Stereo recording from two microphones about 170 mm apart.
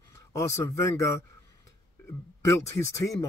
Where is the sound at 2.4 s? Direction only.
20° left (ahead or behind).